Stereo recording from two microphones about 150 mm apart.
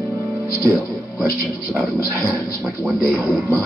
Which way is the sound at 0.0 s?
20° right (ahead or behind).